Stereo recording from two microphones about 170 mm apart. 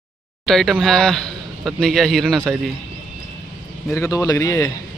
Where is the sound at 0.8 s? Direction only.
Centre (ahead or behind).